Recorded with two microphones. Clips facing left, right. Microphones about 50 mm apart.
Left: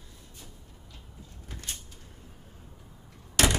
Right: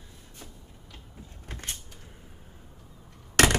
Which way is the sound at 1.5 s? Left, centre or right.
Right.